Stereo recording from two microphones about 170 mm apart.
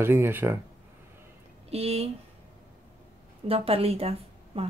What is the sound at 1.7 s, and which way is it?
Speech, 35° right (ahead or behind).